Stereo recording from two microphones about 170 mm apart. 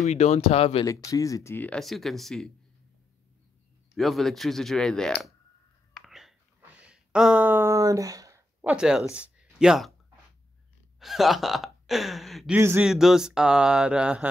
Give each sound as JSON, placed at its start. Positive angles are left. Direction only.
{"t": 0.0, "sound": "speech", "side_deg": 40}
{"t": 0.8, "sound": "speech", "side_deg": 20}
{"t": 3.9, "sound": "speech", "side_deg": 0}
{"t": 5.9, "sound": "whispering", "side_deg": 0}
{"t": 6.8, "sound": "a sound", "side_deg": -5}
{"t": 8.5, "sound": "speech", "side_deg": -5}
{"t": 11.0, "sound": "speech", "side_deg": 0}
{"t": 12.5, "sound": "a man's voice", "side_deg": -15}
{"t": 12.8, "sound": "speech", "side_deg": 0}